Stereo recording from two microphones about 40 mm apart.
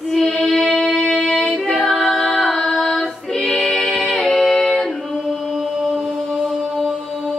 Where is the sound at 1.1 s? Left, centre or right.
Centre.